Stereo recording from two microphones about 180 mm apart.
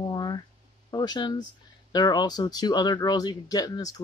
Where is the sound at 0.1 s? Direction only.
25° left (ahead or behind).